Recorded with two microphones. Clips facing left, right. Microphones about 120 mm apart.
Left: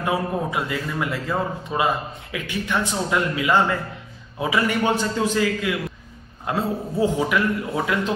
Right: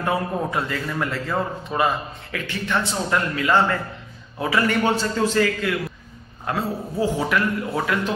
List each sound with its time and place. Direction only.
0.0 s a man's voice: 10° left (ahead or behind)
6.4 s a man's voice: 25° left (ahead or behind)
7.2 s a man's voice: 15° left (ahead or behind)